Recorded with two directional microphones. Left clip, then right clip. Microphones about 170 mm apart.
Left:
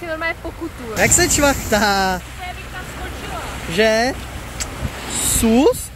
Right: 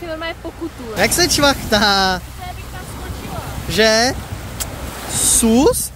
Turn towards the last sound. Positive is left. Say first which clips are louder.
# right 1 dB
turn(degrees=-5)  # may be behind; listen again after turning